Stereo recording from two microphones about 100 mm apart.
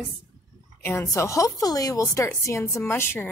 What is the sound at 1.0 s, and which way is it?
Speech, 30° left (ahead or behind).